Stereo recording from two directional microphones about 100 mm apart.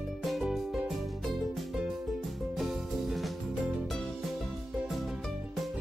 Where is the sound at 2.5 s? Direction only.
Centre (ahead or behind).